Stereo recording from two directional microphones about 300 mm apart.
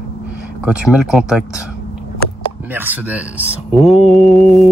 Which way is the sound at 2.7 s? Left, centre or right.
Centre.